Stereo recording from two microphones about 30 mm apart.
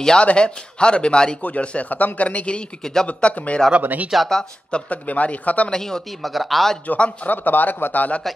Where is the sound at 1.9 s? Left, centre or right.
Left.